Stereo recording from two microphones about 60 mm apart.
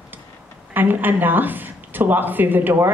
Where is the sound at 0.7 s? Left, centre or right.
Right.